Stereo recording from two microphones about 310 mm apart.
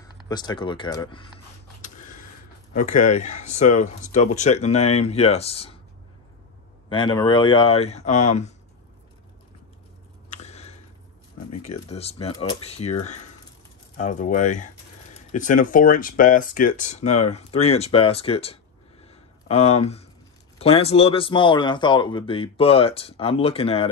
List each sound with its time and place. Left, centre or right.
0.0 s speech: centre
2.7 s speech: left
6.9 s speech: centre
10.3 s a sound: left
11.5 s speech: left
11.9 s speech: centre
19.0 s a sound: centre
20.5 s speech: centre